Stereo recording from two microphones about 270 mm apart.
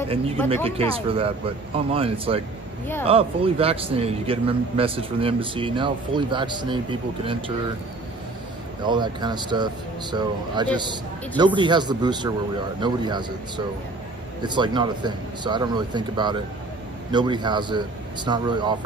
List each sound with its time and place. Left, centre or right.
0.1 s a man's voice: right
8.8 s a man's voice: centre
14.4 s a man's voice: centre